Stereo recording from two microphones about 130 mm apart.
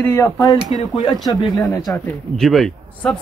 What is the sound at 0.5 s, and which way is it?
Speech, 30° right (ahead or behind).